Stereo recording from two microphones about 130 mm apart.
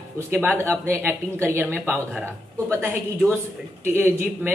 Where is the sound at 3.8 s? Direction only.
15° right (ahead or behind).